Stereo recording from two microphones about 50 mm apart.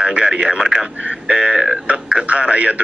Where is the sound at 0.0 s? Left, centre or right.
Centre.